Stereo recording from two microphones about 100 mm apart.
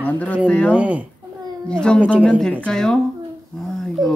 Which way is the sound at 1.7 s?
10° left (ahead or behind).